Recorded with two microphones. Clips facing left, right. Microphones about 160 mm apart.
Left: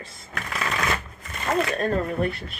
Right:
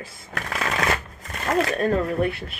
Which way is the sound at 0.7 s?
40° right (ahead or behind).